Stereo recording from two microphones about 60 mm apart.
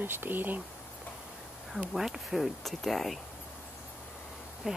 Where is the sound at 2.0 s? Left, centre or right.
Centre.